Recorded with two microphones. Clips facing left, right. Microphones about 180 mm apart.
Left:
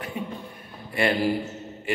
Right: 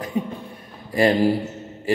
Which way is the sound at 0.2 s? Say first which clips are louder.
Right 9 dB; 35° right (ahead or behind).